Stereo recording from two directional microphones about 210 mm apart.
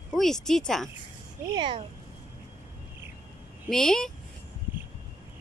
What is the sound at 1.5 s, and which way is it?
Speech, 20° right (ahead or behind).